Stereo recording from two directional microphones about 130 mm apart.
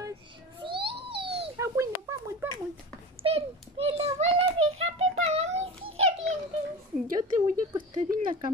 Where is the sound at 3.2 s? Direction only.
50° right (ahead or behind).